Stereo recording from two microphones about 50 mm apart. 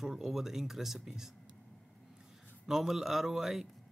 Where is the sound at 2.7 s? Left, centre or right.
Centre.